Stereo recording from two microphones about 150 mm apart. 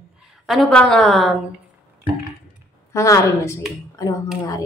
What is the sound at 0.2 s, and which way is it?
A woman's voice, 5° right (ahead or behind).